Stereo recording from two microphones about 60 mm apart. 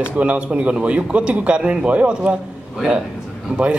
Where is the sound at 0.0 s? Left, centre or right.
Right.